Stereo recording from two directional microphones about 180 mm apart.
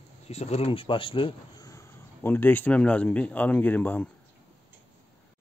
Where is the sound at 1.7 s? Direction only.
15° left (ahead or behind).